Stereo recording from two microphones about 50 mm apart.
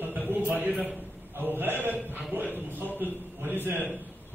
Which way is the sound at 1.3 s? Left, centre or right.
Right.